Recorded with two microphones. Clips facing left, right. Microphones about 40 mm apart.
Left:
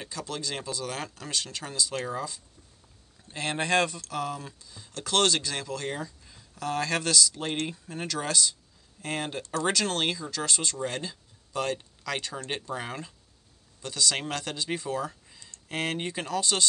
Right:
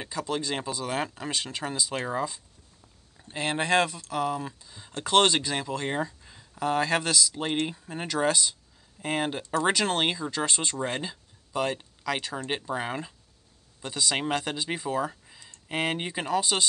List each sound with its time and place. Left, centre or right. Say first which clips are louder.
0.0 s speech: right 5 dB; centre